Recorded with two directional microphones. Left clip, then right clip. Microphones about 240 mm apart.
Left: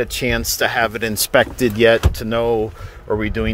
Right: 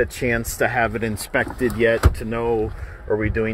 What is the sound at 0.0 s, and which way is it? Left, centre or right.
Speech, centre.